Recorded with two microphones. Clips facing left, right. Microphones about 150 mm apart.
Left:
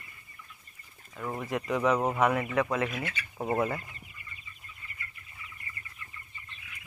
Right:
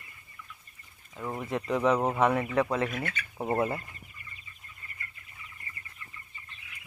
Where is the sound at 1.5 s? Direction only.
30° right (ahead or behind).